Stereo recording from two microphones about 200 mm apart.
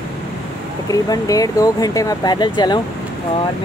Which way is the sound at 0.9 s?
20° left (ahead or behind).